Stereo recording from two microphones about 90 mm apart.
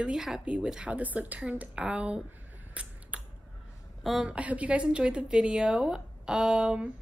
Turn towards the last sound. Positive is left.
turn(degrees=-10)  # may be behind; listen again after turning